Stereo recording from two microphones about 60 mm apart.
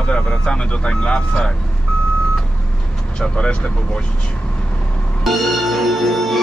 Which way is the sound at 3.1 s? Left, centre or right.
Centre.